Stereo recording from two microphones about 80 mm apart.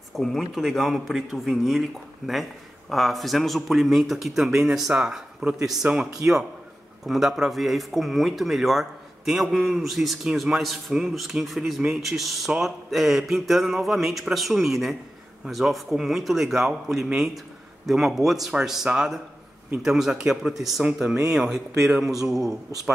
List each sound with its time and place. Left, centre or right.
0.1 s speech: centre
7.1 s speech: centre